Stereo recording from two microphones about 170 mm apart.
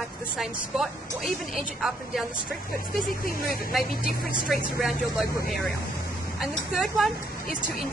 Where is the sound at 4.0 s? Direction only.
55° left (ahead or behind).